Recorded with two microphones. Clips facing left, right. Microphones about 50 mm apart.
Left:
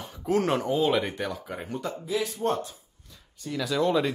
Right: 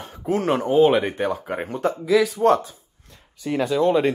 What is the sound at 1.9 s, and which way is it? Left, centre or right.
Speech, right.